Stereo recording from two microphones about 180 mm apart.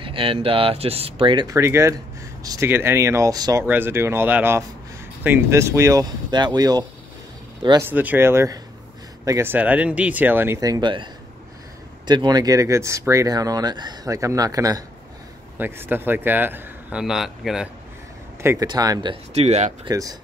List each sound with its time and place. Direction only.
0.0 s speech: 30° right (ahead or behind)
7.8 s speech: 10° right (ahead or behind); by 11.1 s 25° right (ahead or behind)
12.1 s speech: 20° right (ahead or behind); by 17.6 s centre (ahead or behind)
18.4 s speech: 15° right (ahead or behind)
19.3 s speech: 40° right (ahead or behind)
19.9 s speech: 20° right (ahead or behind)